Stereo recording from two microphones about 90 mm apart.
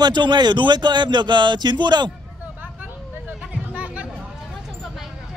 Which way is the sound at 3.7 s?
15° right (ahead or behind).